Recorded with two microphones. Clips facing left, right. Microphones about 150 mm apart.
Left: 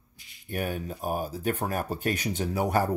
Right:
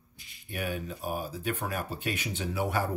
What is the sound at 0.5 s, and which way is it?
Speech, 45° left (ahead or behind).